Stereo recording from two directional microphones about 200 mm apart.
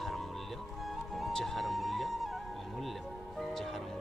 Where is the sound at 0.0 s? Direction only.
Centre (ahead or behind).